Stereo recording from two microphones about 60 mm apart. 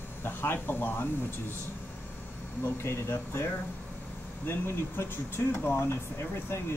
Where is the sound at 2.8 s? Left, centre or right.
Left.